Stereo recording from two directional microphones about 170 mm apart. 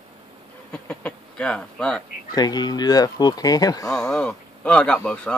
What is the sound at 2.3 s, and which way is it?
Speech, 25° left (ahead or behind).